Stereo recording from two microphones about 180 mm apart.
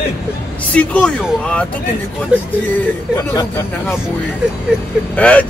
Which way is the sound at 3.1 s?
15° left (ahead or behind).